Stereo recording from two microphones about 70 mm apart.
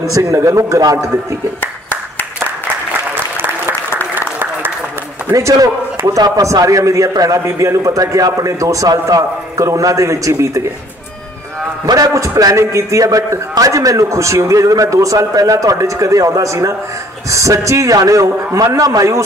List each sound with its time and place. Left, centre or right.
0.0 s a man's voice: right
1.6 s clapping: left
5.3 s a man's voice: right
6.4 s a man's voice: right
11.8 s a man's voice: right